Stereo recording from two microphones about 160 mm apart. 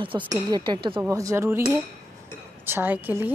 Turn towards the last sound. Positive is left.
turn(degrees=-10)  # may be behind; listen again after turning